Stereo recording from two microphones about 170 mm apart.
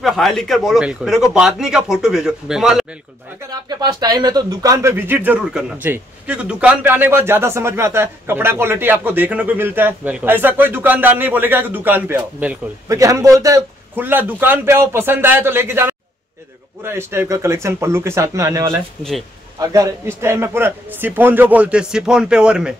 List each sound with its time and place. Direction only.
0.0 s a man's voice: centre (ahead or behind)
3.6 s speech: 25° right (ahead or behind); by 22.8 s 5° right (ahead or behind)